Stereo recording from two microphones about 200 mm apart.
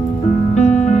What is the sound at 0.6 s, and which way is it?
Music, 35° left (ahead or behind).